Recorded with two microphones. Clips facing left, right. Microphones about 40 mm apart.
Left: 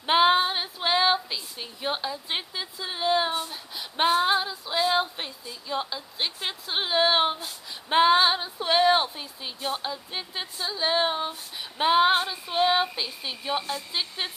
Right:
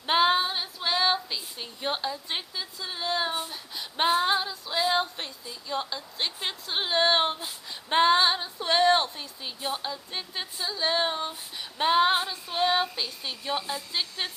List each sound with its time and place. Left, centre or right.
0.0 s female singing: centre
1.0 s speech: centre
2.2 s female singing: centre
3.3 s female singing: centre